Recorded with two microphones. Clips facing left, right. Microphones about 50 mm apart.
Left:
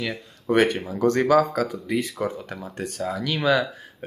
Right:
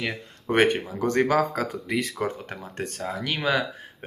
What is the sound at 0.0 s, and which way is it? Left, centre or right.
Speech, right.